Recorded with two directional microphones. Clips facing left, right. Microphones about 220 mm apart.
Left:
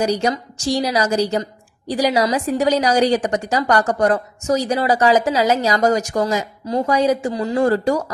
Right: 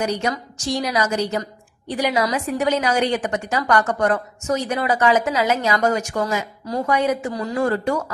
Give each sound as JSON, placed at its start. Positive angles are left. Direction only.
{"t": 0.0, "sound": "a woman's voice", "side_deg": 35}